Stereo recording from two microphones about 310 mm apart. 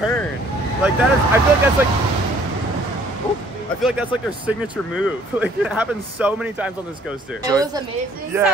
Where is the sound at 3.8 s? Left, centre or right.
Centre.